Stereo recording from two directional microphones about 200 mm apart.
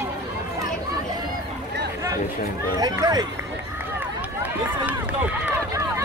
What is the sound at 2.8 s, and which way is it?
Speech, 20° right (ahead or behind).